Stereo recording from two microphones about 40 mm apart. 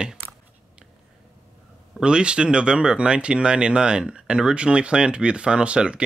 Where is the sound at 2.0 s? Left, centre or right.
Right.